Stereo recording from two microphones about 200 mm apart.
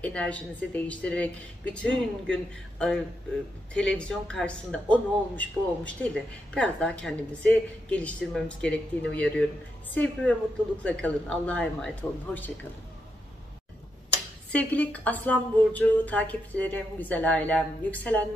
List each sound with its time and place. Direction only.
0.0 s a woman's voice: 5° left (ahead or behind)
14.5 s a woman's voice: 5° left (ahead or behind)